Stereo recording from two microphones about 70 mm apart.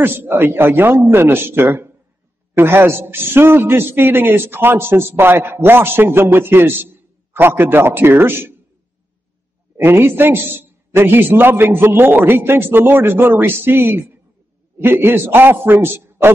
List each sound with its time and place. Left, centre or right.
0.0 s a man's voice: right
9.8 s a man's voice: right